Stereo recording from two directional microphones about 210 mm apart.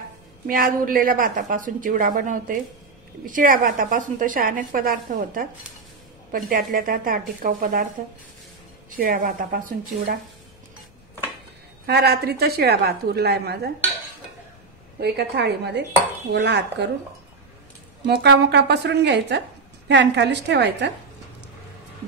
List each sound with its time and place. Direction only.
0.5 s a woman's voice: 40° right (ahead or behind)
8.9 s speech: 40° right (ahead or behind)
11.8 s speech: 50° right (ahead or behind)
15.0 s speech: 50° right (ahead or behind)
18.0 s a woman's voice: 50° right (ahead or behind)